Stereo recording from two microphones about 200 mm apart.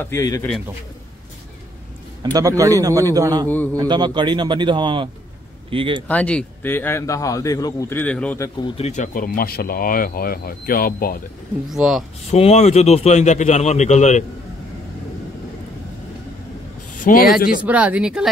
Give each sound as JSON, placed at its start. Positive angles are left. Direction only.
{"t": 0.0, "sound": "speech", "side_deg": 15}
{"t": 2.3, "sound": "a man's voice", "side_deg": -15}
{"t": 3.4, "sound": "speech", "side_deg": 10}
{"t": 3.7, "sound": "a man's voice", "side_deg": -20}
{"t": 6.0, "sound": "speech", "side_deg": 5}
{"t": 8.5, "sound": "speech", "side_deg": 25}
{"t": 11.7, "sound": "speech", "side_deg": 0}
{"t": 12.3, "sound": "a man's voice", "side_deg": 30}
{"t": 17.0, "sound": "a man's voice", "side_deg": 45}
{"t": 17.6, "sound": "a man's voice", "side_deg": -5}